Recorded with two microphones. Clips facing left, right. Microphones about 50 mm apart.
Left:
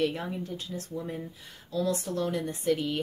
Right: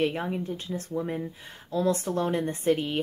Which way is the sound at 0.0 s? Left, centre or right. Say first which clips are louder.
Right 2 dB; right.